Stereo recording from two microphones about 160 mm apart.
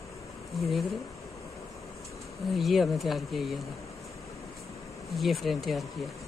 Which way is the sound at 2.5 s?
Centre (ahead or behind).